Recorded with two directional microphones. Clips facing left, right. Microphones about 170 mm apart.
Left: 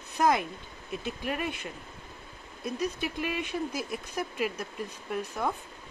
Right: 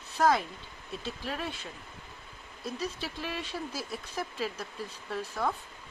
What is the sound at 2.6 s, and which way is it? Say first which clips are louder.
Speech: left 4 dB; 15° left (ahead or behind).